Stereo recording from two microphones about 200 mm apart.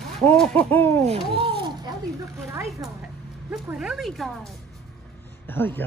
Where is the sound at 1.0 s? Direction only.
25° right (ahead or behind).